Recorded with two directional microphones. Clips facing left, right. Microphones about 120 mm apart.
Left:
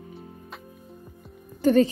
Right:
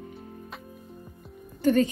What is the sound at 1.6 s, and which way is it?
Speech, 35° left (ahead or behind).